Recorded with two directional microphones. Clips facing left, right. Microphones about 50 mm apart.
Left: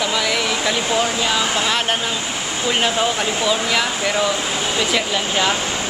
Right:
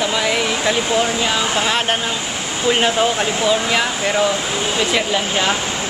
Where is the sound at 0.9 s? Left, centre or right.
Centre.